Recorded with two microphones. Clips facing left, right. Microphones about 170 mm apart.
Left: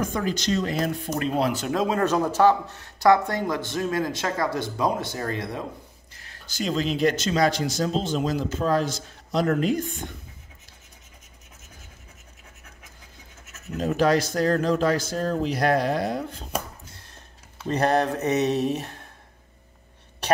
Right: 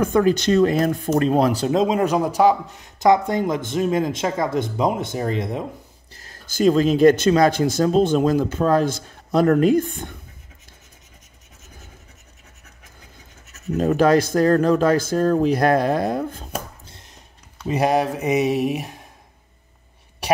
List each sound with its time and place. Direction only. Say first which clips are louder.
0.0 s speech: right 9 dB; 60° right (ahead or behind); by 1.7 s 40° right (ahead or behind)
1.7 s speech: right 4 dB; 20° right (ahead or behind)
6.1 s speech: right 8 dB; 40° right (ahead or behind)
13.8 s speech: right 5 dB; 50° right (ahead or behind)
16.8 s a sound: right 1 dB; 25° right (ahead or behind)
17.6 s speech: right 3 dB; 10° right (ahead or behind)